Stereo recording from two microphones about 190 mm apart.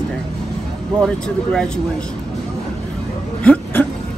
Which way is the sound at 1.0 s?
5° left (ahead or behind).